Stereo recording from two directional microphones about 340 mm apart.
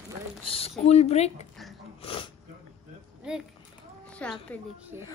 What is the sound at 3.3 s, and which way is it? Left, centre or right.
Speech, centre.